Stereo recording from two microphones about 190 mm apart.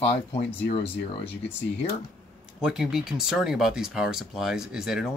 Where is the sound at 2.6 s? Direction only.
5° right (ahead or behind).